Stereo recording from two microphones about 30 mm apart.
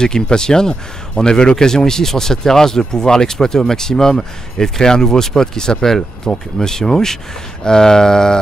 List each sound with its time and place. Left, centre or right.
0.0 s speech: left